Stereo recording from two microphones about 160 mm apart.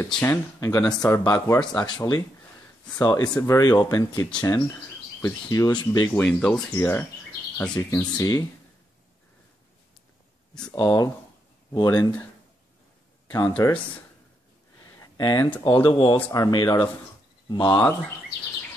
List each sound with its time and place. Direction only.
0.0 s speech: 15° left (ahead or behind)
6.1 s speech: 5° left (ahead or behind)
8.2 s speech: 20° left (ahead or behind)
10.7 s speech: 20° left (ahead or behind)
13.5 s speech: 15° left (ahead or behind)
15.0 s a sound: 25° left (ahead or behind)
15.6 s speech: 30° left (ahead or behind)
17.6 s speech: 15° left (ahead or behind)